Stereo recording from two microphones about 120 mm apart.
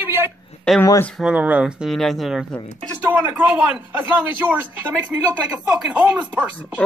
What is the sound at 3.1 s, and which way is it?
Speech, 15° right (ahead or behind).